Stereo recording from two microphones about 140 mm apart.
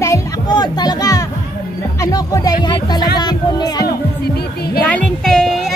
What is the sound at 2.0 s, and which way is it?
Speech, 25° left (ahead or behind).